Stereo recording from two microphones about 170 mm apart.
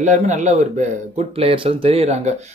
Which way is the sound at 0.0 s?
45° right (ahead or behind).